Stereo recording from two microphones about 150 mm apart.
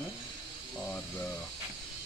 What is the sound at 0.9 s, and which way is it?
Speech, 10° left (ahead or behind).